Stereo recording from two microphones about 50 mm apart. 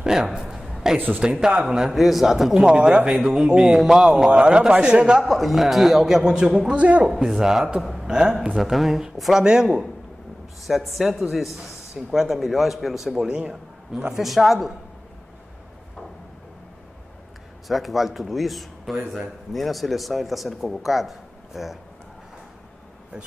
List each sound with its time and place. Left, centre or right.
0.0 s a man's voice: centre
0.9 s speech: right
1.2 s a man's voice: centre
2.0 s a man's voice: centre
5.2 s a man's voice: centre
6.8 s speech: right
7.2 s a man's voice: centre
7.8 s a sound: centre
8.1 s a man's voice: centre
8.5 s a man's voice: centre
10.7 s a man's voice: centre
14.1 s a man's voice: centre
17.6 s a man's voice: centre